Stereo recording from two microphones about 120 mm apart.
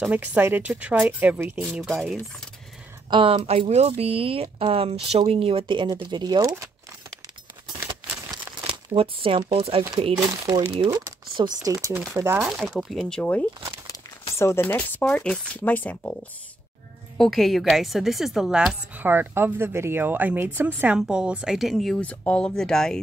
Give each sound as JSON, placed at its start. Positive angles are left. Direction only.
{"t": 0.0, "sound": "speech", "side_deg": -15}
{"t": 1.6, "sound": "a woman's voice", "side_deg": 0}
{"t": 3.1, "sound": "speech", "side_deg": -45}
{"t": 8.6, "sound": "speech", "side_deg": -50}
{"t": 10.1, "sound": "speech", "side_deg": -35}
{"t": 12.4, "sound": "a woman's voice", "side_deg": 0}
{"t": 15.0, "sound": "speech", "side_deg": 5}
{"t": 17.2, "sound": "a woman's voice", "side_deg": 0}
{"t": 18.9, "sound": "speech", "side_deg": -15}